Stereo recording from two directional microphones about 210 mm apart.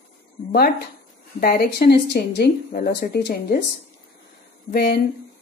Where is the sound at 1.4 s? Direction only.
45° left (ahead or behind).